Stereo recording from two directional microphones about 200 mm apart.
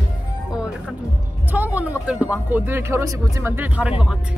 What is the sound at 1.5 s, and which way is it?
Speech, 10° right (ahead or behind).